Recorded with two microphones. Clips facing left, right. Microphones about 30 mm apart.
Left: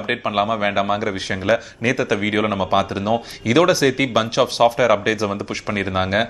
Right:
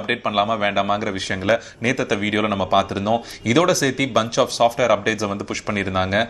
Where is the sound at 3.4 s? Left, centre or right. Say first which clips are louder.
Left 3 dB; centre.